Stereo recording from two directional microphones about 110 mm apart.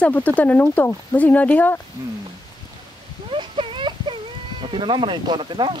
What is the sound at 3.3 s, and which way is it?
Sheep, 50° right (ahead or behind).